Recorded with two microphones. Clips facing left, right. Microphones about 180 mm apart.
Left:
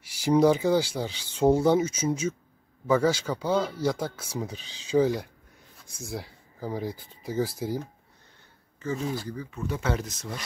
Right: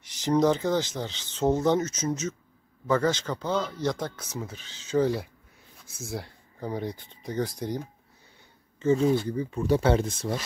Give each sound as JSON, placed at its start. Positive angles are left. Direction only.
{"t": 0.0, "sound": "speech", "side_deg": 10}
{"t": 5.0, "sound": "speech", "side_deg": 0}
{"t": 8.8, "sound": "speech", "side_deg": -25}